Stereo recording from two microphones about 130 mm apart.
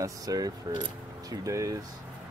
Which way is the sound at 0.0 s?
30° right (ahead or behind).